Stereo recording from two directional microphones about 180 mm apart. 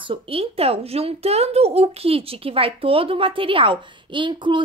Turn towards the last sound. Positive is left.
turn(degrees=-25)  # may be behind; listen again after turning